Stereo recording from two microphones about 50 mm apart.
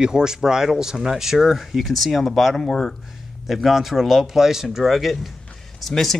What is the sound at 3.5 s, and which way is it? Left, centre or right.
Speech, centre.